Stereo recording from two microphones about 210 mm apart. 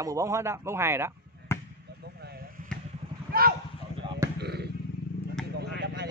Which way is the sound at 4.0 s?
20° right (ahead or behind).